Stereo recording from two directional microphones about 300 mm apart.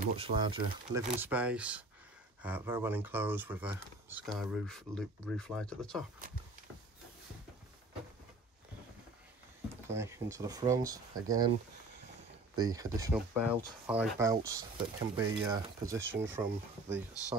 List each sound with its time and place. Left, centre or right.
0.0 s speech: centre
9.8 s speech: centre
12.7 s speech: centre